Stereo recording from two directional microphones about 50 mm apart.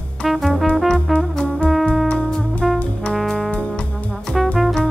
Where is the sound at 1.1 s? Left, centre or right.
Left.